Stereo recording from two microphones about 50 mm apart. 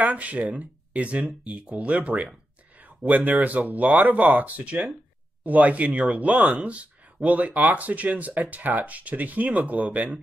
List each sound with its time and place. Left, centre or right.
0.0 s speech: right